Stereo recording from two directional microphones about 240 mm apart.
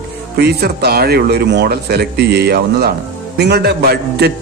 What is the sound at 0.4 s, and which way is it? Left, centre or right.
A man's voice, right.